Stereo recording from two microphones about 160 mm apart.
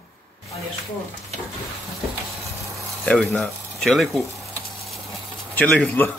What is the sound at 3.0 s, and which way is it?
Speech, 10° left (ahead or behind).